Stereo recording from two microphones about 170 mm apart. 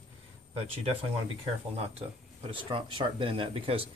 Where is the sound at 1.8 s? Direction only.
35° right (ahead or behind).